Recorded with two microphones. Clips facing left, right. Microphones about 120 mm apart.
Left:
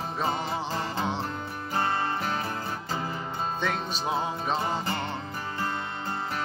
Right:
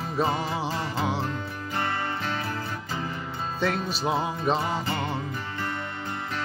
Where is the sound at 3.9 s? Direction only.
5° right (ahead or behind).